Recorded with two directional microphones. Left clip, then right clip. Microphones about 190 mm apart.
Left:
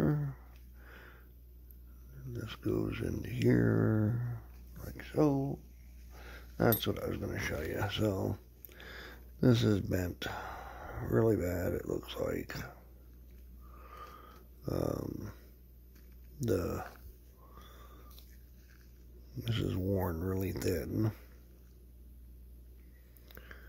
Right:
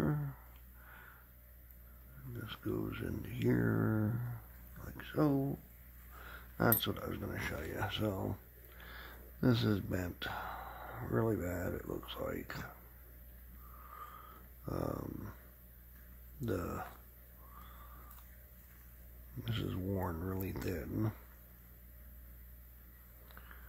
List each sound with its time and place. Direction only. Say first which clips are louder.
0.0 s a sound: left 4 dB; 25° left (ahead or behind)
2.3 s speech: left 5 dB; 25° left (ahead or behind)
14.6 s speech: left 5 dB; 25° left (ahead or behind)
15.0 s dog: left 4 dB; 15° left (ahead or behind)
16.3 s speech: left 6 dB; 25° left (ahead or behind)
19.4 s speech: left 5 dB; 25° left (ahead or behind)